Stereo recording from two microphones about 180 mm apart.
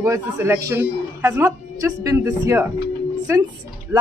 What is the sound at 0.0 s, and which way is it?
Speech, 15° right (ahead or behind).